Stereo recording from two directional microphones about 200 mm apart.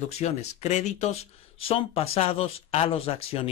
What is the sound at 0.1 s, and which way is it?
A man's voice, 35° left (ahead or behind).